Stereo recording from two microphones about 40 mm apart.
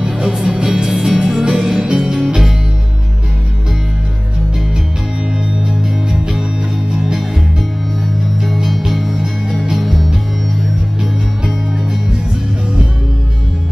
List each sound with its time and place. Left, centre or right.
0.0 s music: centre
1.2 s music: centre
5.7 s music: centre
8.6 s music: centre